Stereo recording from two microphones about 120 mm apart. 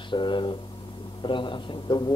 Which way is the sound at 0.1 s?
40° left (ahead or behind).